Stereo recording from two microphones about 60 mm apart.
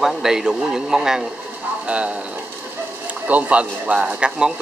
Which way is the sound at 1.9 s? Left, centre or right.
Centre.